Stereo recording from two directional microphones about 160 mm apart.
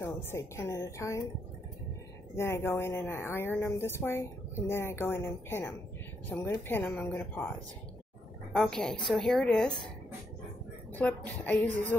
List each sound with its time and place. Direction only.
0.0 s speech: 15° left (ahead or behind)
2.3 s speech: 15° left (ahead or behind)
8.5 s speech: 5° left (ahead or behind)
10.9 s speech: 10° left (ahead or behind)